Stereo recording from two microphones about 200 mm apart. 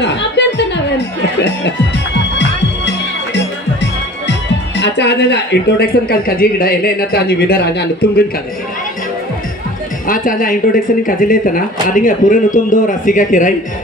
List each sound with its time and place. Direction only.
0.0 s music: 60° left (ahead or behind)
3.8 s speech: 60° left (ahead or behind)
10.0 s speech: 45° left (ahead or behind)